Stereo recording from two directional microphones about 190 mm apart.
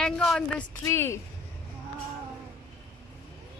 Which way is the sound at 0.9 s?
15° left (ahead or behind).